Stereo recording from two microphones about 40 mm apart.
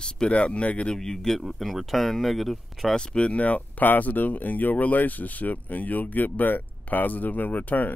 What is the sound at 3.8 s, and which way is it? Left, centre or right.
Speech, left.